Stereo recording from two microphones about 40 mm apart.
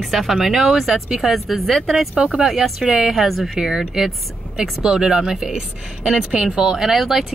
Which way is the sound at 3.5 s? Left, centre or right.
Centre.